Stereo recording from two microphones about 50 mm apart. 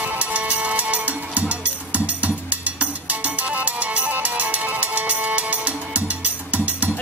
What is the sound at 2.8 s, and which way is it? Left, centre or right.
Music, right.